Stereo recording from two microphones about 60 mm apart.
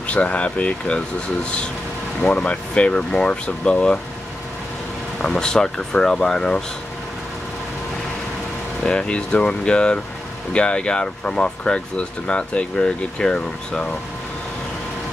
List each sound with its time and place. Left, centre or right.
0.0 s speech: left
5.2 s speech: centre
8.8 s speech: centre